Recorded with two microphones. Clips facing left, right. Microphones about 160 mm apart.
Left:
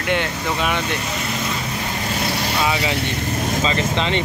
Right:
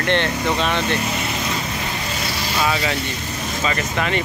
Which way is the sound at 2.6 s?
20° left (ahead or behind).